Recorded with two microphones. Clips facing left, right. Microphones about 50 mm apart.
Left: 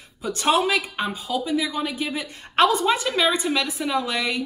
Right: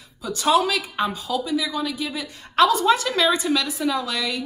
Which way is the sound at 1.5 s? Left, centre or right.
Left.